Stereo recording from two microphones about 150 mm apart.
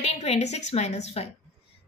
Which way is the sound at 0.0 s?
45° left (ahead or behind).